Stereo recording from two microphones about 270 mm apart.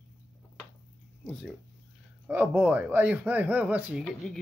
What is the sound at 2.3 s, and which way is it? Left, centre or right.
Speech, centre.